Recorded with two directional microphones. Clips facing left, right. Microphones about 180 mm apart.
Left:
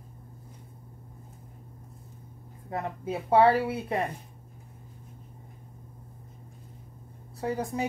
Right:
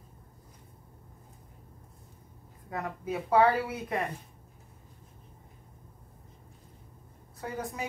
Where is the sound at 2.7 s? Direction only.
25° left (ahead or behind).